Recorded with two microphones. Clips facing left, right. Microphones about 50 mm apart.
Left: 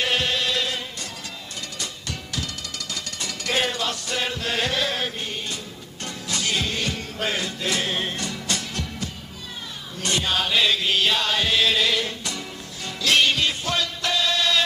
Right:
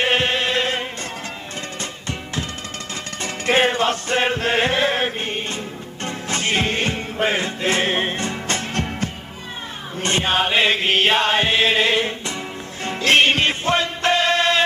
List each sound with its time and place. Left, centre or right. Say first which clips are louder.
0.0 s chant: right 4 dB; right
1.8 s music: right 4 dB; right
9.9 s chant: right 5 dB; right
12.8 s music: right 4 dB; right